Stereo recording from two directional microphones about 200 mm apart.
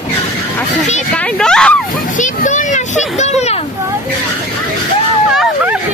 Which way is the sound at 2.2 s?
40° left (ahead or behind).